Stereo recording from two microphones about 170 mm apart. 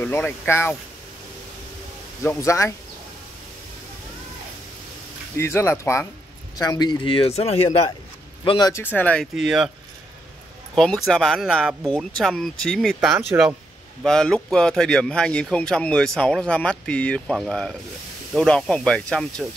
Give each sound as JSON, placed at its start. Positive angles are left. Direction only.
{"t": 0.0, "sound": "speech", "side_deg": 10}
{"t": 2.2, "sound": "speech", "side_deg": 15}
{"t": 5.4, "sound": "speech", "side_deg": 15}
{"t": 8.5, "sound": "speech", "side_deg": 25}
{"t": 8.9, "sound": "speech", "side_deg": 10}
{"t": 9.3, "sound": "speech", "side_deg": -5}
{"t": 10.7, "sound": "speech", "side_deg": 0}
{"t": 13.3, "sound": "speech", "side_deg": -15}
{"t": 14.0, "sound": "speech", "side_deg": 5}